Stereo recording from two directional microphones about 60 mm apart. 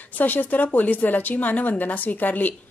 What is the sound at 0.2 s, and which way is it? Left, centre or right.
A woman's voice, left.